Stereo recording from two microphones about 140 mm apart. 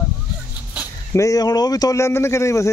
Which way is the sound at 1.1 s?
25° left (ahead or behind).